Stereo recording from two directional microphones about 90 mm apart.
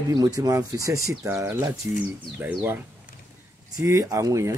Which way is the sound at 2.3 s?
20° right (ahead or behind).